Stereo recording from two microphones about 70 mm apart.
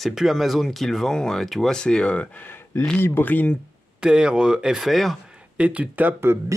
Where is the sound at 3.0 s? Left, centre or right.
Left.